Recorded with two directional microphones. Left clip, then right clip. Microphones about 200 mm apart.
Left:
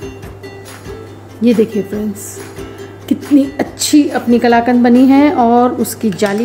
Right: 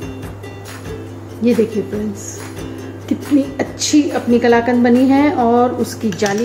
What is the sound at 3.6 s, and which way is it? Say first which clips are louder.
A woman's voice: left 3 dB; 45° left (ahead or behind).